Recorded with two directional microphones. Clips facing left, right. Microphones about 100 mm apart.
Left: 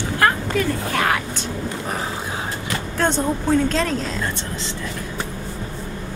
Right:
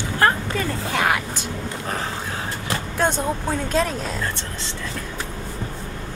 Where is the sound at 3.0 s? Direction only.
10° right (ahead or behind).